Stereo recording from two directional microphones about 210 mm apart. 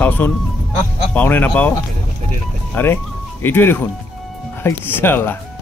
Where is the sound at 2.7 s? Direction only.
10° left (ahead or behind).